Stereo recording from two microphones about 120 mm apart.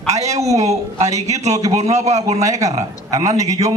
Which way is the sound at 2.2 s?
30° right (ahead or behind).